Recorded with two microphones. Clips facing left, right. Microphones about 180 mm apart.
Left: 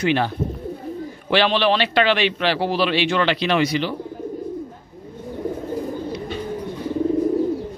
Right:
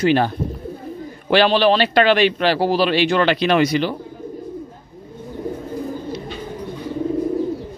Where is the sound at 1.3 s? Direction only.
40° right (ahead or behind).